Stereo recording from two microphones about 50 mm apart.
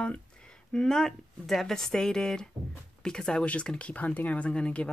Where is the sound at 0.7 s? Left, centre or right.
Centre.